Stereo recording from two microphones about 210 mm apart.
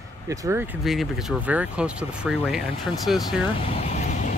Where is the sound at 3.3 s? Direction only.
25° left (ahead or behind).